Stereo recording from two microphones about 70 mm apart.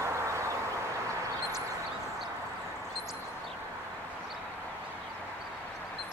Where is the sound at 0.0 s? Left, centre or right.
Right.